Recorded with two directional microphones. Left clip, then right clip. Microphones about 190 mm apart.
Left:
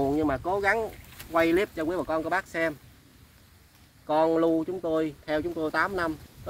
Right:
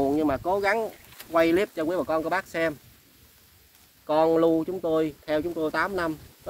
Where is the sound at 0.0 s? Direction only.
25° right (ahead or behind).